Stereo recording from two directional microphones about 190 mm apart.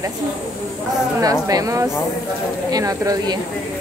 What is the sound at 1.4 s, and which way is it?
Speech, 15° right (ahead or behind).